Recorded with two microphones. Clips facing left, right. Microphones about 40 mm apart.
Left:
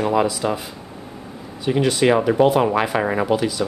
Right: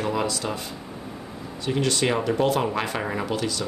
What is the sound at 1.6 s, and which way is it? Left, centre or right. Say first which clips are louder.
Speech: left 6 dB; centre.